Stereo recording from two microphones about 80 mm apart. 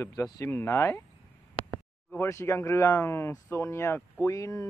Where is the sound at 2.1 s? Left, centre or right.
Left.